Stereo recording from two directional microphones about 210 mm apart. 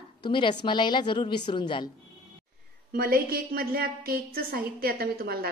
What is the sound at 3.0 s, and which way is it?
A woman's voice, 45° right (ahead or behind).